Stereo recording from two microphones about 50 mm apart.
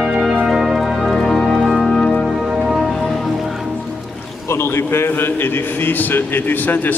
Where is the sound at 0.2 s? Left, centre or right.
Centre.